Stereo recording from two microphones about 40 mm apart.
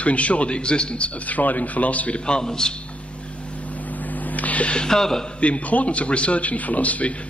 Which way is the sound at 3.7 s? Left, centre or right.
Left.